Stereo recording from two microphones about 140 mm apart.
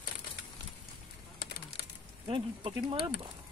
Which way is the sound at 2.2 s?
35° right (ahead or behind).